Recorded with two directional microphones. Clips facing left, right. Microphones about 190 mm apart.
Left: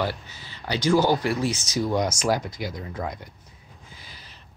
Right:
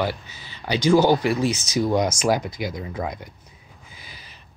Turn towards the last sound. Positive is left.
turn(degrees=-15)  # may be behind; listen again after turning